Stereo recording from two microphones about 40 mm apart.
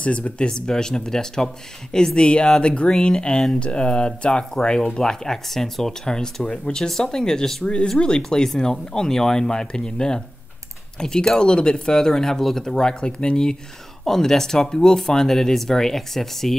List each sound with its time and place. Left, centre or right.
0.0 s speech: left
0.5 s speech: centre
12.7 s speech: left
14.0 s speech: centre